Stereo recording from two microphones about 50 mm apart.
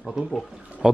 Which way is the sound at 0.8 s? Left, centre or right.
Centre.